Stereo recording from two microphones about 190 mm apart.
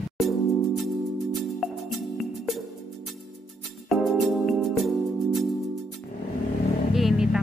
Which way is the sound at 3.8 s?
Centre (ahead or behind).